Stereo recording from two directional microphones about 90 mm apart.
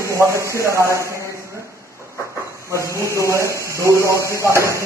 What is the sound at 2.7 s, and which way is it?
Speech, 35° right (ahead or behind).